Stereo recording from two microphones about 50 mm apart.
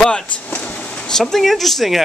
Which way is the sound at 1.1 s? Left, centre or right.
Centre.